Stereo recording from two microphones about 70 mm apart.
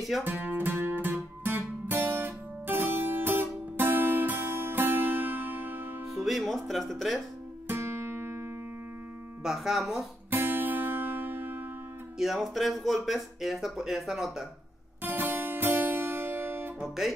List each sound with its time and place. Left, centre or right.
0.2 s music: right
6.1 s music: centre
7.6 s music: right
9.4 s speech: centre
10.3 s music: right
12.2 s speech: centre
15.0 s music: right
16.8 s speech: centre